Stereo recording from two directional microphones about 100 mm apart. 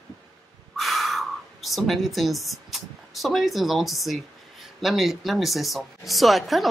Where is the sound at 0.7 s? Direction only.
Centre (ahead or behind).